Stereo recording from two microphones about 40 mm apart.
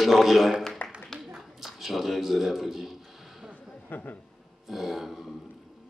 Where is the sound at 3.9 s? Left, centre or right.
Left.